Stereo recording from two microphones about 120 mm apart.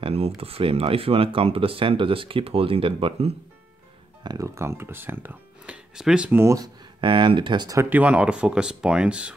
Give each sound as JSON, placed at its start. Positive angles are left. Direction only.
{"t": 0.0, "sound": "a sound", "side_deg": -55}
{"t": 0.4, "sound": "speech", "side_deg": -50}
{"t": 4.4, "sound": "speech", "side_deg": -25}
{"t": 6.4, "sound": "speech", "side_deg": -25}
{"t": 7.0, "sound": "speech", "side_deg": -45}
{"t": 7.7, "sound": "speech", "side_deg": -20}